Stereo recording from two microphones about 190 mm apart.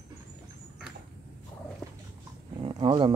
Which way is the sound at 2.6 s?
25° right (ahead or behind).